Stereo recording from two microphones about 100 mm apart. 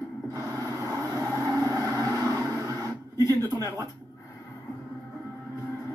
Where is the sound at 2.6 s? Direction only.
35° right (ahead or behind).